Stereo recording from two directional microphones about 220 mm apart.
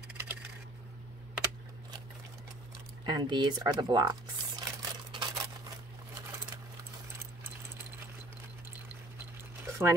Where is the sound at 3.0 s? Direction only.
20° right (ahead or behind).